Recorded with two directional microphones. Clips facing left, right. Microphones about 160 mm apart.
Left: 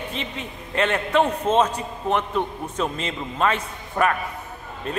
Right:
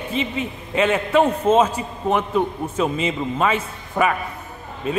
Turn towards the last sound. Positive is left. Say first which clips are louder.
# right 5 dB
turn(degrees=-5)  # may be behind; listen again after turning